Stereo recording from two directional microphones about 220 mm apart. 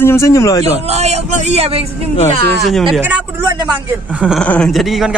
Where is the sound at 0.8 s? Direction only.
30° right (ahead or behind).